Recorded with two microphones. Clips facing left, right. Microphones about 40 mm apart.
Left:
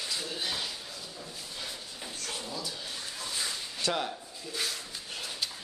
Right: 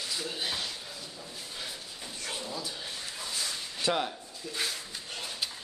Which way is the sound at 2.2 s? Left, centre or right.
Centre.